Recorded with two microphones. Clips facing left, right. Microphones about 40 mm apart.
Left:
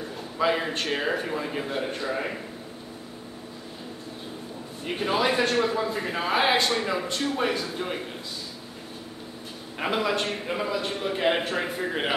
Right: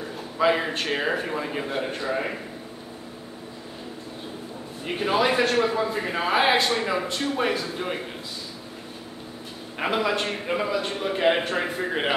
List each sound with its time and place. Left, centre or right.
0.0 s a man's voice: centre
4.8 s a man's voice: centre
9.8 s a man's voice: centre